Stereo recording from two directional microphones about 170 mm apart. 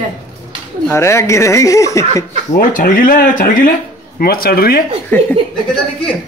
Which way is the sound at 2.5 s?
55° left (ahead or behind).